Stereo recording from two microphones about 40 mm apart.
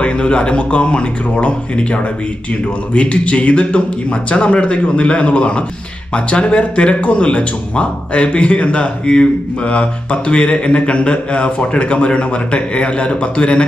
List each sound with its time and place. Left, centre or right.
0.0 s speech: left